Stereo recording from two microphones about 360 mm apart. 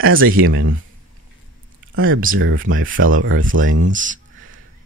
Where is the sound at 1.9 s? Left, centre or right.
Right.